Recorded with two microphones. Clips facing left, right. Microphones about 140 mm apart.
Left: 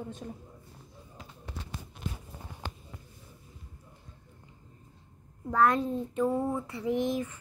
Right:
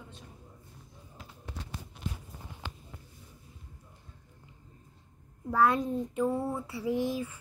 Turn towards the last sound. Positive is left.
turn(degrees=-10)  # may be behind; listen again after turning